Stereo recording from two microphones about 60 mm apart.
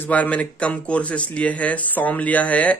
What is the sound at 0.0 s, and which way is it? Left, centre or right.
Speech, left.